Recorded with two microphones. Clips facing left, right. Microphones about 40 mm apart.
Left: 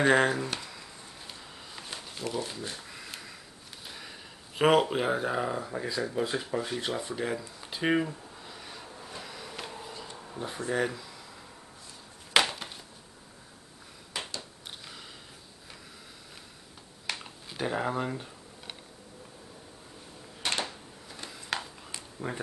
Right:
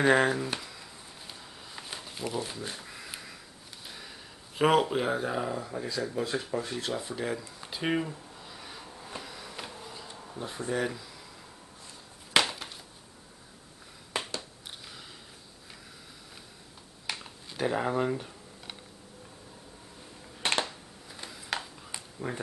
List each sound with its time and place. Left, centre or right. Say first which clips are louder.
0.0 s speech: even; centre
1.8 s a sound: right 1 dB; centre
4.6 s speech: left 1 dB; centre
7.0 s speech: left 1 dB; centre
7.6 s a sound: left 3 dB; centre
9.2 s bee: left 1 dB; centre
10.7 s speech: left 1 dB; centre
12.4 s chop: left 1 dB; centre
17.2 s camera: right 6 dB; centre
20.4 s a sound: right 3 dB; right
21.1 s a sound: even; centre
22.2 s speech: even; centre